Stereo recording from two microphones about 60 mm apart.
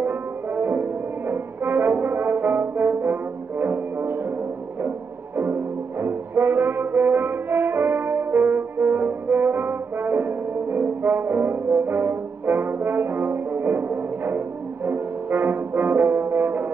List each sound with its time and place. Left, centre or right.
0.0 s brass instrument: right
11.1 s brass instrument: right
16.3 s music: right